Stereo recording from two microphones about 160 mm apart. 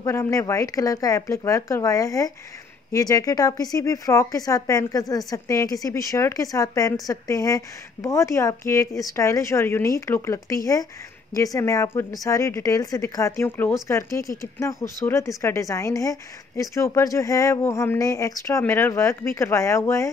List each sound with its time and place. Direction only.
0.0 s speech: 20° left (ahead or behind)